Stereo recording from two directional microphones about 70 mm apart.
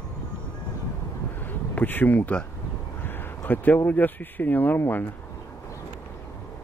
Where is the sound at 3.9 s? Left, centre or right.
Left.